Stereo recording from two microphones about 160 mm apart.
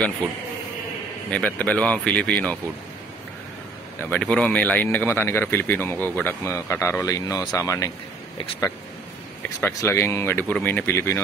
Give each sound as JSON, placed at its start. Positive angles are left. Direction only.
{"t": 1.3, "sound": "speech", "side_deg": 10}
{"t": 4.1, "sound": "speech", "side_deg": 5}
{"t": 9.4, "sound": "speech", "side_deg": 15}